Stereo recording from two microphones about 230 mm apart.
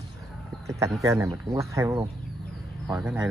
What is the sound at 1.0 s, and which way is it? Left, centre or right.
Speech, centre.